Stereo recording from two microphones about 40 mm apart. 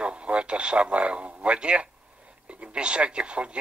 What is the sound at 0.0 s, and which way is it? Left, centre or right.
A man's voice, right.